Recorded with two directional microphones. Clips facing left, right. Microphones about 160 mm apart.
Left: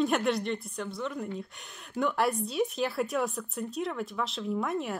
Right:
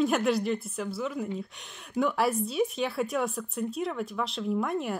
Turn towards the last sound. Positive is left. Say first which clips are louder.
# right 2 dB
turn(degrees=0)  # may be behind; listen again after turning